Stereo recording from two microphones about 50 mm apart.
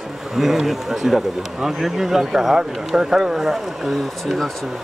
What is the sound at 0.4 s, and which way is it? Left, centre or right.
Speech, centre.